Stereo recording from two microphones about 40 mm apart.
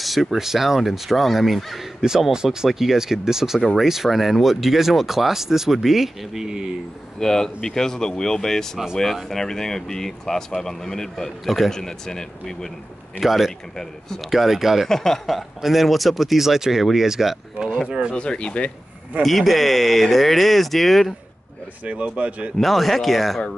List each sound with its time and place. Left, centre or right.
0.0 s speech: centre
2.0 s speech: centre
7.2 s speech: centre
11.4 s speech: centre
11.7 s speech: centre
13.2 s speech: centre
13.7 s speech: centre
14.3 s speech: centre
14.9 s speech: centre
15.2 s speech: centre
18.1 s speech: left
19.2 s speech: centre
22.0 s speech: right
22.6 s speech: centre